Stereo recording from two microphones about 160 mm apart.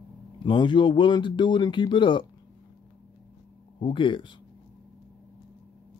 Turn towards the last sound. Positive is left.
turn(degrees=30)  # may be behind; listen again after turning